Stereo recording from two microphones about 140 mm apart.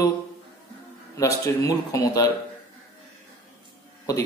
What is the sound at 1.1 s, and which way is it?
A man's voice, 20° left (ahead or behind).